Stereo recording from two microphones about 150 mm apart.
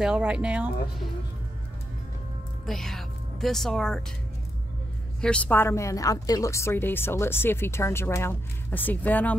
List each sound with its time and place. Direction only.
0.0 s speech: 5° right (ahead or behind)
2.6 s a woman's voice: centre (ahead or behind)
5.2 s a woman's voice: 10° left (ahead or behind)